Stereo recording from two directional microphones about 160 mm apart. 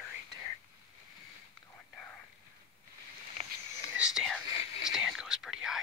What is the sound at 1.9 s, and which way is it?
Whispering, 5° left (ahead or behind).